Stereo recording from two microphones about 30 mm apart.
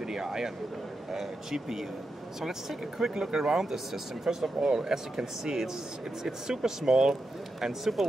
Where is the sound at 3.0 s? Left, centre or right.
Right.